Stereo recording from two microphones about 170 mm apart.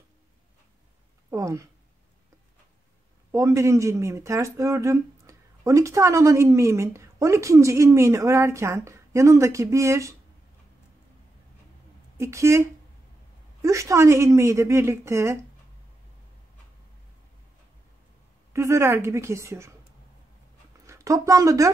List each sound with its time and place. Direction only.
1.3 s a sound: 15° right (ahead or behind)
3.3 s speech: 15° right (ahead or behind)
12.2 s speech: 15° right (ahead or behind)
18.5 s speech: 15° right (ahead or behind)
20.8 s speech: 20° right (ahead or behind)